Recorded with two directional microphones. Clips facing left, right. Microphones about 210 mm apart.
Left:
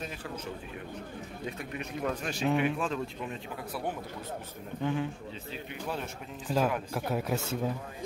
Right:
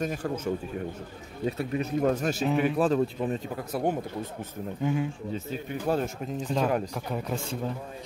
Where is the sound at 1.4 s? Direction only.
35° right (ahead or behind).